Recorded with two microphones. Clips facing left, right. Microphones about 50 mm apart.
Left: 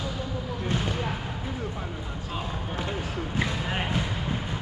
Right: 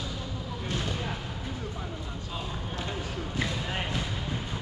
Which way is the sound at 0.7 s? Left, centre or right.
Centre.